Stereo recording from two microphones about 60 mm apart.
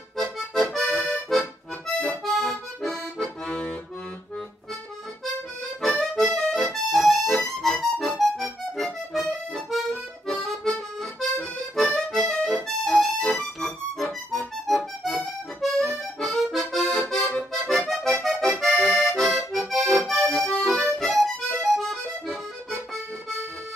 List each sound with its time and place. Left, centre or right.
0.2 s accordion: centre
2.0 s music: centre
5.8 s music: centre
6.3 s accordion: centre
9.1 s music: centre
11.9 s accordion: centre
14.7 s music: centre
16.5 s accordion: centre
17.2 s accordion: centre
17.5 s accordion: centre